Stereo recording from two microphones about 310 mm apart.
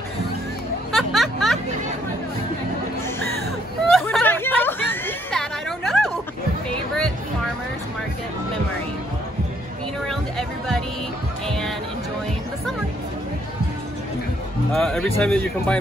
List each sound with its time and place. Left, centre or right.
0.9 s music: centre
3.9 s a sound: centre
10.0 s music: centre
14.7 s speech: centre